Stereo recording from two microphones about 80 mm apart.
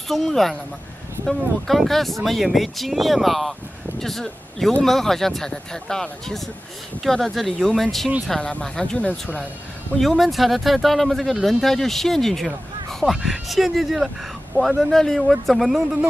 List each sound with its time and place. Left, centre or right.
0.1 s speech: centre